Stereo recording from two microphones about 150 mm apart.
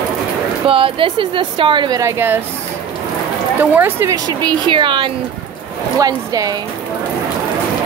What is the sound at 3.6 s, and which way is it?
A woman's voice, 10° right (ahead or behind).